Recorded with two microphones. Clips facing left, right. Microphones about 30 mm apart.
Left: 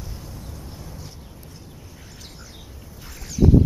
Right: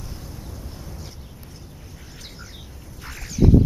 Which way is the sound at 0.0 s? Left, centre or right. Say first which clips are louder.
Even; centre.